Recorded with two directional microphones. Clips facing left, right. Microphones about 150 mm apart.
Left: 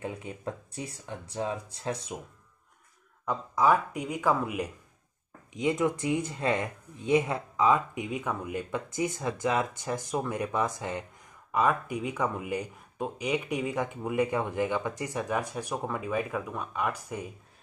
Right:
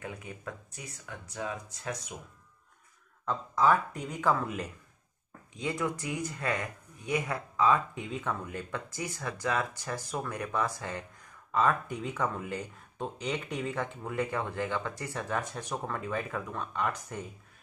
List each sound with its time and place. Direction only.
0.0 s speech: 25° left (ahead or behind)
3.3 s speech: 10° left (ahead or behind)